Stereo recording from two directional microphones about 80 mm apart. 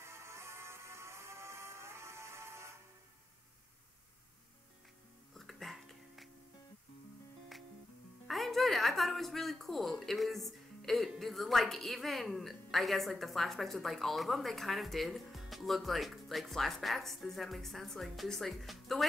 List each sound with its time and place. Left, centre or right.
0.0 s music: right
5.3 s music: centre
8.3 s a woman's voice: centre